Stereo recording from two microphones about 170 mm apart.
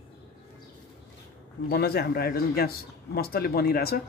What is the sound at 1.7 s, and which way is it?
A man's voice, 70° left (ahead or behind).